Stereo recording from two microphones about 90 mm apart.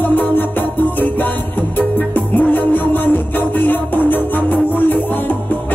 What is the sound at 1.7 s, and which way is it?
Music, 20° left (ahead or behind).